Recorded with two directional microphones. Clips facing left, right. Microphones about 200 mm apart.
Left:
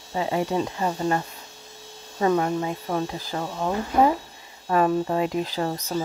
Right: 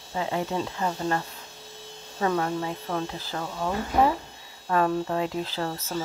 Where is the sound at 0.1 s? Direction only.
20° left (ahead or behind).